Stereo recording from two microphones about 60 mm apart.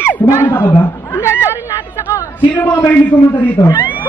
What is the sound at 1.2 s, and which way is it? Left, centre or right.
Speech, left.